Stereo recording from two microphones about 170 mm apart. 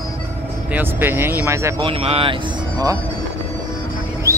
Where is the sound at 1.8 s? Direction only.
35° right (ahead or behind).